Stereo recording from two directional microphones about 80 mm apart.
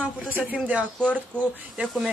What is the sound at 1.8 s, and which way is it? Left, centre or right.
Speech, centre.